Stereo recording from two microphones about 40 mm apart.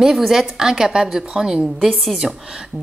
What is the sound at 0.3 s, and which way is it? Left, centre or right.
A woman's voice, centre.